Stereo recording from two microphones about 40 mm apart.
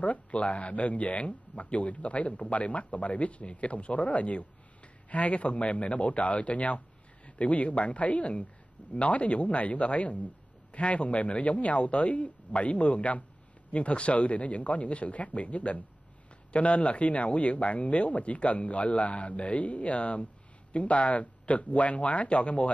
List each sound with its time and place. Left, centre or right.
0.0 s speech: left